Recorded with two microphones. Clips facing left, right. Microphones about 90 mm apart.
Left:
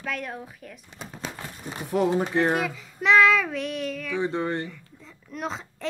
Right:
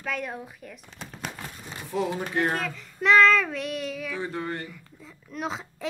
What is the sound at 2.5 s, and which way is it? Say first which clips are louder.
A woman's voice: left 4 dB; 5° left (ahead or behind).